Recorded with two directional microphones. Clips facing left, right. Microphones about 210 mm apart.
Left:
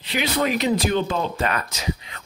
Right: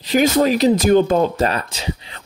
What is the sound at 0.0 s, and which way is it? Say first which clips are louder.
Speech: right 8 dB; 40° right (ahead or behind).